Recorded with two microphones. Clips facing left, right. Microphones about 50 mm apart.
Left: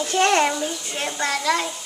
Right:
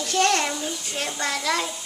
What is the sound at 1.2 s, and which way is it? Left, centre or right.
Speech, centre.